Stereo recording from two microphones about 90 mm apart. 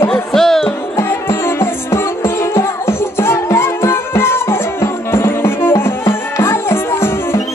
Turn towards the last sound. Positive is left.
turn(degrees=25)  # may be behind; listen again after turning